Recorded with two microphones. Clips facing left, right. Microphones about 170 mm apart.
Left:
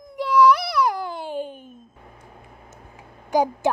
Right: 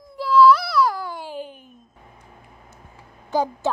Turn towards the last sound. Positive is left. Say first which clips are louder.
# left 2 dB
turn(degrees=15)  # may be behind; listen again after turning